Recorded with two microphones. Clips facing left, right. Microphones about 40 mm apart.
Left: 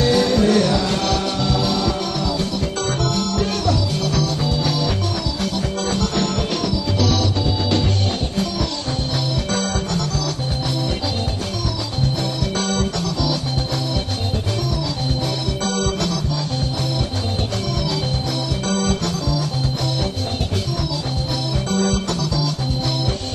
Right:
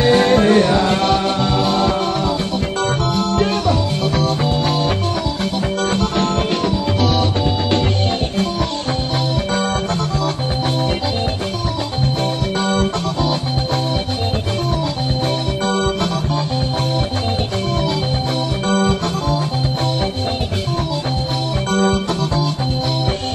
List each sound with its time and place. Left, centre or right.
0.0 s music: right
3.6 s music: right
12.6 s music: right
15.6 s music: right
21.7 s organ: right